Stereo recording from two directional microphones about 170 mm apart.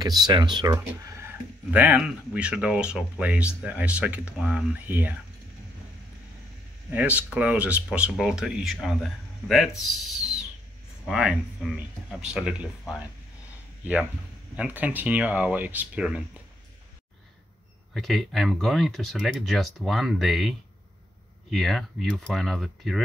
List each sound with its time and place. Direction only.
0.0 s speech: 25° right (ahead or behind)
1.7 s speech: 10° right (ahead or behind)
6.9 s speech: 10° right (ahead or behind)
14.6 s speech: 10° right (ahead or behind)
17.9 s speech: centre (ahead or behind)